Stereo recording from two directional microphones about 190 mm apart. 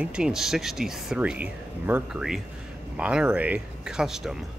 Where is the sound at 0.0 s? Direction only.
5° right (ahead or behind).